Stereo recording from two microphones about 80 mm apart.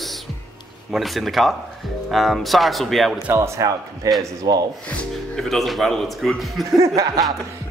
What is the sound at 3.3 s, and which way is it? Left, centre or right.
A man's voice, right.